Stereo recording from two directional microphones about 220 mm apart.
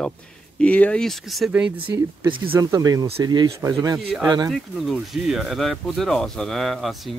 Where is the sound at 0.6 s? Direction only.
5° left (ahead or behind).